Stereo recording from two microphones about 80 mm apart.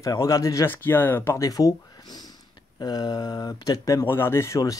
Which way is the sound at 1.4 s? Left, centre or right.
Left.